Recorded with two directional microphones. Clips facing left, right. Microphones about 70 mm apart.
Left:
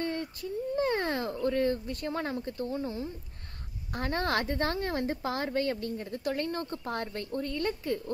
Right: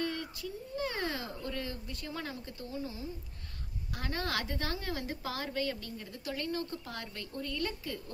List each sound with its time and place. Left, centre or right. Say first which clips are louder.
0.0 s a woman's voice: left 3 dB; left